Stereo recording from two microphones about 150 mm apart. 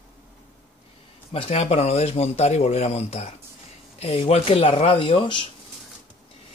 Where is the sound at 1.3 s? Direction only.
40° left (ahead or behind).